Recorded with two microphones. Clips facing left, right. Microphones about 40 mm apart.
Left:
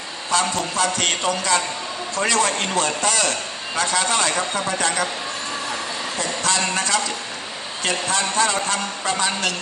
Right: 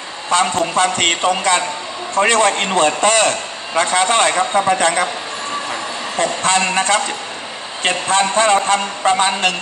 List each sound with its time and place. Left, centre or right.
0.3 s a man's voice: right
6.1 s a man's voice: right